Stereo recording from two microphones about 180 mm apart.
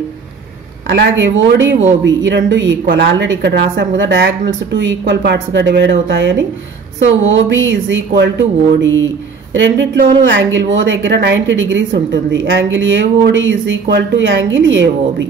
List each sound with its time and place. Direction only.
0.8 s speech: 90° right